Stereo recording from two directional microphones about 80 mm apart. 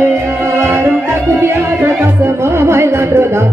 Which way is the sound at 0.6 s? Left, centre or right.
Right.